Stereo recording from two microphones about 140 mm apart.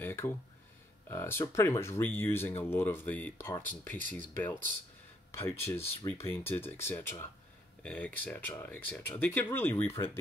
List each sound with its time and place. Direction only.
0.0 s speech: 15° left (ahead or behind)